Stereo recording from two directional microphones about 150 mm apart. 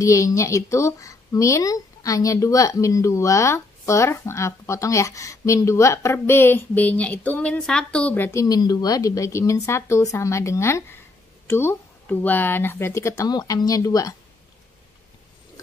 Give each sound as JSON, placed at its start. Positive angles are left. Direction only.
{"t": 0.0, "sound": "a woman's voice", "side_deg": 20}